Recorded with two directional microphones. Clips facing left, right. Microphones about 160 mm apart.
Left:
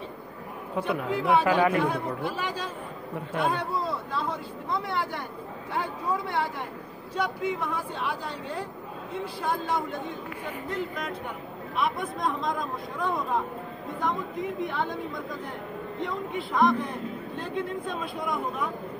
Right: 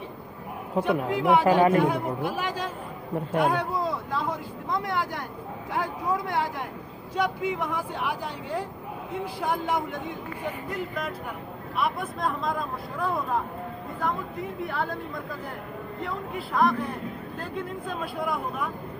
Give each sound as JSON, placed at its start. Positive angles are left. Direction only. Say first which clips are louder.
{"t": 0.8, "sound": "speech", "louder": "right 3 dB", "side_deg": -15}
{"t": 11.7, "sound": "speech", "louder": "even", "side_deg": -5}
{"t": 14.6, "sound": "speech", "louder": "right 1 dB", "side_deg": -5}
{"t": 16.0, "sound": "speech", "louder": "left 2 dB", "side_deg": -5}